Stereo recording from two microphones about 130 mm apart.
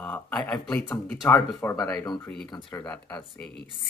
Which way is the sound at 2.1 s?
5° left (ahead or behind).